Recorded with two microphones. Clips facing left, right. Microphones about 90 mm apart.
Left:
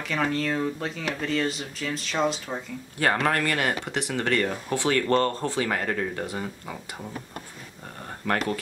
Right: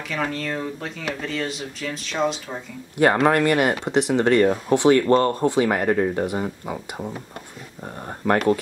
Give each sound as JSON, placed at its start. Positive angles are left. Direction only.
{"t": 0.1, "sound": "speech", "side_deg": 0}
{"t": 3.0, "sound": "speech", "side_deg": -20}